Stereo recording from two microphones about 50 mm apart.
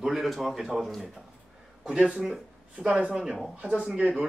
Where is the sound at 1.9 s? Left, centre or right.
Centre.